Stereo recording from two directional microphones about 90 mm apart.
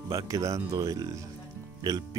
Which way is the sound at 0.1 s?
40° right (ahead or behind).